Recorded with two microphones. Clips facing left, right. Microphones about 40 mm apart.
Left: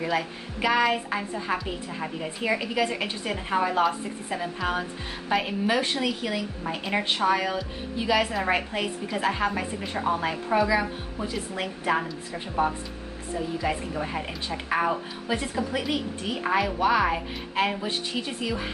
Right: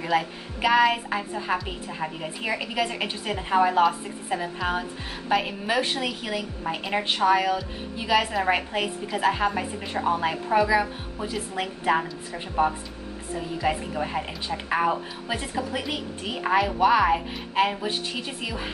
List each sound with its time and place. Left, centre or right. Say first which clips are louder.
0.0 s a woman's voice: right 2 dB; centre